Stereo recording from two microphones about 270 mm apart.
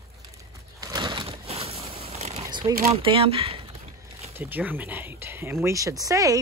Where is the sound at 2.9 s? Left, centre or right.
Centre.